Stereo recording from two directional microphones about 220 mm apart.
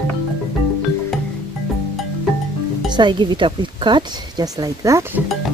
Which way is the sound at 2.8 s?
20° right (ahead or behind).